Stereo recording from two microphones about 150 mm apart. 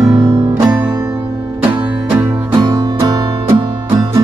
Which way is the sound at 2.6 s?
30° right (ahead or behind).